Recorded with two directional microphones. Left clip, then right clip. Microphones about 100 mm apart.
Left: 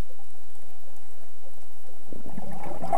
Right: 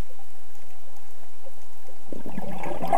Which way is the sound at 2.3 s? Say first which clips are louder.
Right 5 dB; 25° right (ahead or behind).